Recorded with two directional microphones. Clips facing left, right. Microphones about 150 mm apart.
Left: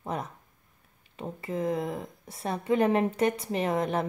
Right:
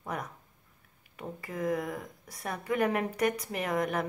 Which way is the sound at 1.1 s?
25° left (ahead or behind).